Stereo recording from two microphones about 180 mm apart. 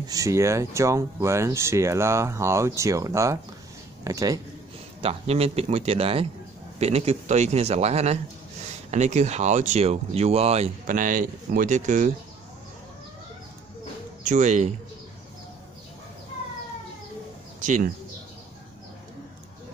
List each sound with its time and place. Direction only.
0.0 s speech: 20° right (ahead or behind)
5.0 s speech: 35° right (ahead or behind)
10.9 s speech: 45° right (ahead or behind)
14.2 s speech: 45° right (ahead or behind)
17.6 s speech: 45° right (ahead or behind)